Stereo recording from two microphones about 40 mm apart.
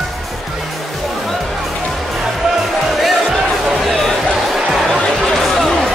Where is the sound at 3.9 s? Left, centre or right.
Centre.